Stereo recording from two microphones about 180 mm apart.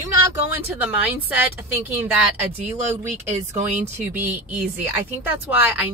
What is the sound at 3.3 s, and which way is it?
Speech, 40° right (ahead or behind).